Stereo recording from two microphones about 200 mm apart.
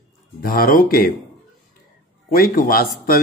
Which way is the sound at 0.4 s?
45° left (ahead or behind).